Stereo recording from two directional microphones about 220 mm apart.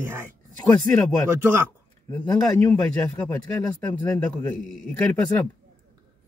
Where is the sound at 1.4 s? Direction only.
10° right (ahead or behind).